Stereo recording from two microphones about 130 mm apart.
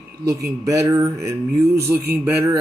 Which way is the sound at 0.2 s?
25° right (ahead or behind).